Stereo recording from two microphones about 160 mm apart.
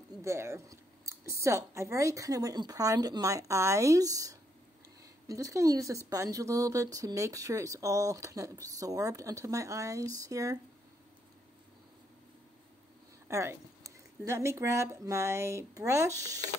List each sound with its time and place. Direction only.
0.2 s speech: 15° right (ahead or behind)
13.3 s speech: 20° right (ahead or behind)